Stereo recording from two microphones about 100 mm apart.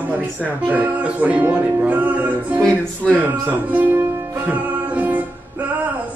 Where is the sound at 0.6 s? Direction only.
15° right (ahead or behind).